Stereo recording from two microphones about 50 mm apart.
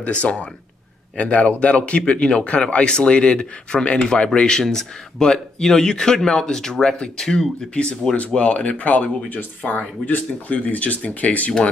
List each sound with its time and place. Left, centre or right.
0.0 s speech: left
8.4 s speech: left